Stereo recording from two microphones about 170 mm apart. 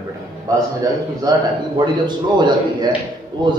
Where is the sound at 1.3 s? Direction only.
25° right (ahead or behind).